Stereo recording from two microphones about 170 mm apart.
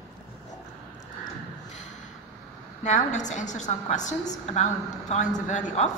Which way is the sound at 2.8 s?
45° left (ahead or behind).